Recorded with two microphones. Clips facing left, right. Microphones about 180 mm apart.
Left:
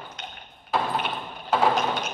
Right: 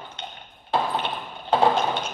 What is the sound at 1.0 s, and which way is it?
Mechanisms, 25° right (ahead or behind).